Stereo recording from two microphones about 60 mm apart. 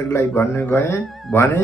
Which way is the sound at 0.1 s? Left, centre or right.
Left.